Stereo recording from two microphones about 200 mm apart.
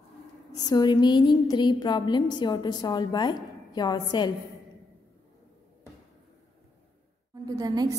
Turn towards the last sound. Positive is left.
turn(degrees=-20)  # may be behind; listen again after turning